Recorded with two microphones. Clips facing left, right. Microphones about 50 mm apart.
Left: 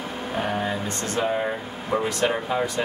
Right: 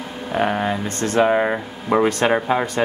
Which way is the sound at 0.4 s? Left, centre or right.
Right.